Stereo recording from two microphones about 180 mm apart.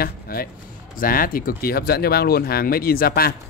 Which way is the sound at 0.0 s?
55° left (ahead or behind).